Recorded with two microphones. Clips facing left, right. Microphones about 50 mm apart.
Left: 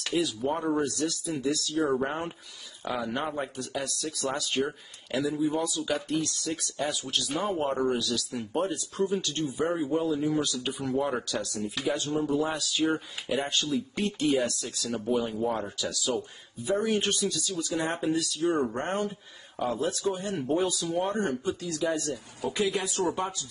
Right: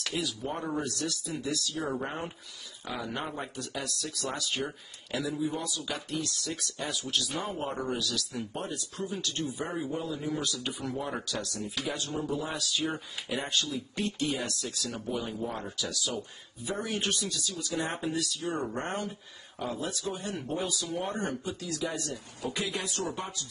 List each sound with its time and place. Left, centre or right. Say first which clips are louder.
0.0 s speech: left 6 dB; centre
9.7 s speech: left 7 dB; centre